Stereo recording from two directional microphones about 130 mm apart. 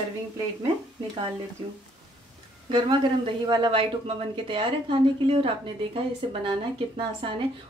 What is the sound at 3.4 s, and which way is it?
Speech, 35° right (ahead or behind).